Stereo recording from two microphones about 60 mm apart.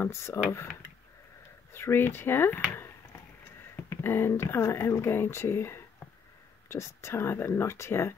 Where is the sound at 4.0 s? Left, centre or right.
Left.